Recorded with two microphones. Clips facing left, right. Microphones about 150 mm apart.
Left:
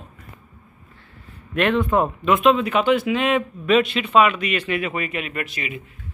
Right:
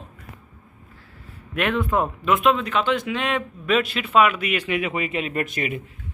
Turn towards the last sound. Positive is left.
turn(degrees=-50)  # may be behind; listen again after turning